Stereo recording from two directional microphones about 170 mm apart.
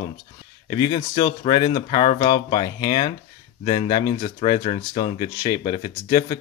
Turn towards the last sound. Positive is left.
turn(degrees=30)  # may be behind; listen again after turning